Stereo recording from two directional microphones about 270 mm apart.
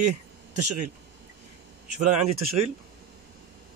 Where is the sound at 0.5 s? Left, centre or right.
Right.